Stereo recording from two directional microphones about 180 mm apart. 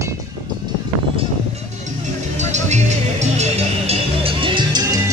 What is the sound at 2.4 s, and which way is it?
Music, 40° right (ahead or behind).